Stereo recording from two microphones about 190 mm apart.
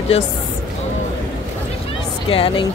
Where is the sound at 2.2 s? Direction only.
30° left (ahead or behind).